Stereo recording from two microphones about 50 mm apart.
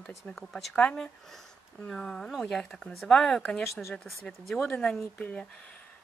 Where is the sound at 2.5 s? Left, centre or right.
Centre.